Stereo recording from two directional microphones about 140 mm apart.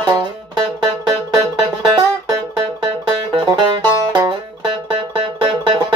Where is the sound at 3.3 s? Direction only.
35° right (ahead or behind).